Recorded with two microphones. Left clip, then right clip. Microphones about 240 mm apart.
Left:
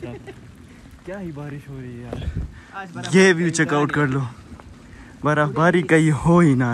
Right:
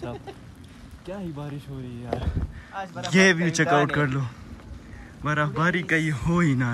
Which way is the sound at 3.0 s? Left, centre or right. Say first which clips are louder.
Left 4 dB; centre.